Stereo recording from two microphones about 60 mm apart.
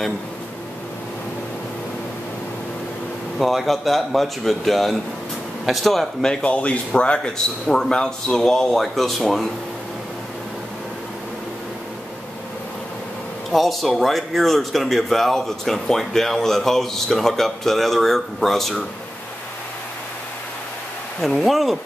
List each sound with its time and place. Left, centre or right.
3.3 s speech: centre
6.4 s speech: left; by 9.5 s centre
13.5 s speech: centre
21.2 s speech: centre